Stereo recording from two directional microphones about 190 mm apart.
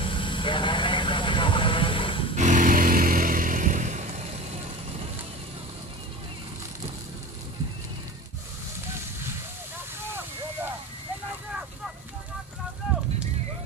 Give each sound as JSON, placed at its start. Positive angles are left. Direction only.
{"t": 0.0, "sound": "vehicle", "side_deg": 25}
{"t": 2.3, "sound": "vehicle", "side_deg": -40}